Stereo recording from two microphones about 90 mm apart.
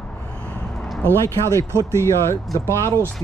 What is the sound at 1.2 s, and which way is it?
Speech, 35° left (ahead or behind).